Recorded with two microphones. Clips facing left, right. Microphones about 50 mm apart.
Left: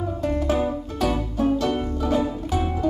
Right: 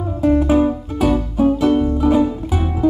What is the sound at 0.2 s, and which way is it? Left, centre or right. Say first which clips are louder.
Music: right 10 dB; centre.